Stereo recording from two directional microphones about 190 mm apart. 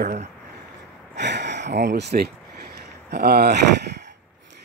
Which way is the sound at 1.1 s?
65° right (ahead or behind).